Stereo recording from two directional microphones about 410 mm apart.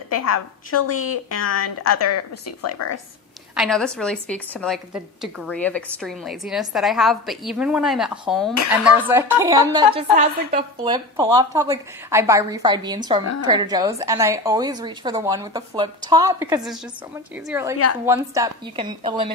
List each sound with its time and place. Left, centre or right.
0.7 s a woman's voice: left
3.5 s a woman's voice: centre